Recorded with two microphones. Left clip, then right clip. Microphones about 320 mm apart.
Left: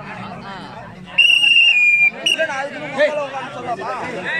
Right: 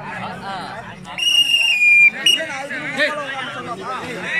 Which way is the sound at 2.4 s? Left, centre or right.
Left.